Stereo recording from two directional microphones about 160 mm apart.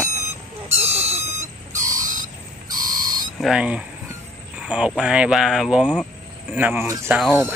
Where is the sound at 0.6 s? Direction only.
40° right (ahead or behind).